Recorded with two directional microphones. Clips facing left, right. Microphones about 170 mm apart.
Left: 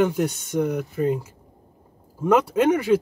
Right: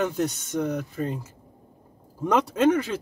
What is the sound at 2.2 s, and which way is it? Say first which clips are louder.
Speech: left 2 dB; 10° left (ahead or behind).